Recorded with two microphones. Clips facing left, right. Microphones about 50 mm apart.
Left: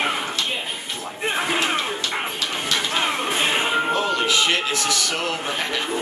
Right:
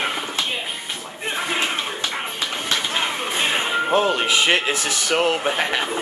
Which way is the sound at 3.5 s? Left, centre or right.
Centre.